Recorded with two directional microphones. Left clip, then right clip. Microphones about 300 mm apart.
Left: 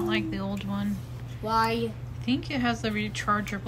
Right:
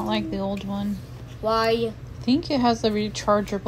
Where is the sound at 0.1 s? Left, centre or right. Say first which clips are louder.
Right 3 dB; centre.